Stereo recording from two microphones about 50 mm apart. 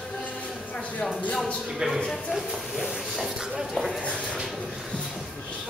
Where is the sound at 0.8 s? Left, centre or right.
Left.